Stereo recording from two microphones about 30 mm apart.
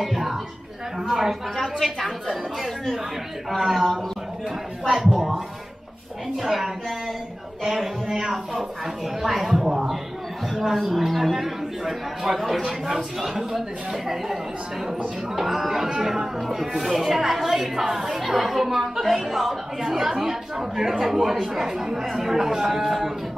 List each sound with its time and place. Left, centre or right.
0.0 s a sound: centre
0.9 s speech: centre
1.6 s a man's voice: centre
3.4 s speech: centre
9.2 s a man's voice: centre
12.8 s a man's voice: centre